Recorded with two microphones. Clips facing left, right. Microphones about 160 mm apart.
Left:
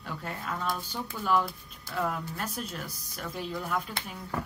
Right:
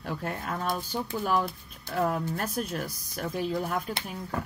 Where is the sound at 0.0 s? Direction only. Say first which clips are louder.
Right 4 dB; 45° right (ahead or behind).